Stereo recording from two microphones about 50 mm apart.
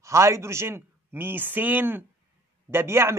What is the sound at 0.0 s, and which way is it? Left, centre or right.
A man's voice, right.